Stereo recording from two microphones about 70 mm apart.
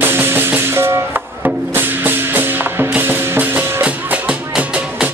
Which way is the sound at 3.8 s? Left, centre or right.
Centre.